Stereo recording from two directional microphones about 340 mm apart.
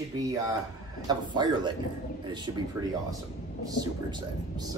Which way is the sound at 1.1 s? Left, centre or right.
Centre.